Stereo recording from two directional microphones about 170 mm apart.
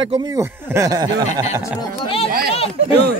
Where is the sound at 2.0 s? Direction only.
35° left (ahead or behind).